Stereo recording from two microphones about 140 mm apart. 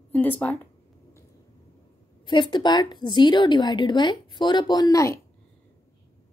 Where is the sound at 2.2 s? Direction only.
35° left (ahead or behind).